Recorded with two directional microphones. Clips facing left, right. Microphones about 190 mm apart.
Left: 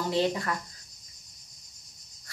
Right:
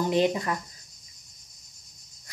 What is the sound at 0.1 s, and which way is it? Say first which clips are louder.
Speech: right 1 dB; 15° right (ahead or behind).